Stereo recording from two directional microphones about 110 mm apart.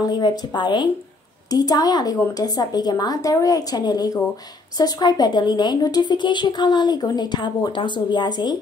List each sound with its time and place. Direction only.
0.1 s a woman's voice: 40° left (ahead or behind)